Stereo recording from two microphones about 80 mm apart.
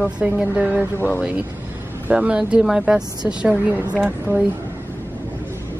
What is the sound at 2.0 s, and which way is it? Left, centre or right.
Speech, centre.